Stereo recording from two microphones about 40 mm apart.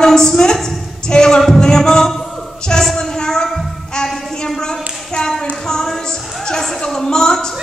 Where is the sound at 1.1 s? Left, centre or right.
Centre.